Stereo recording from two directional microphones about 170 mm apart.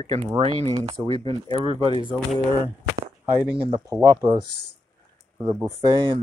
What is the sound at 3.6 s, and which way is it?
Speech, 25° right (ahead or behind).